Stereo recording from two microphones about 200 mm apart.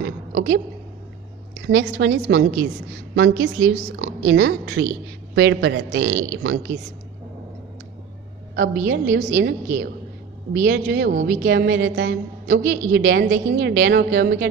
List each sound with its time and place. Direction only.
0.0 s a sound: 65° right (ahead or behind)
1.7 s a woman's voice: 65° right (ahead or behind)
8.5 s a woman's voice: 65° right (ahead or behind)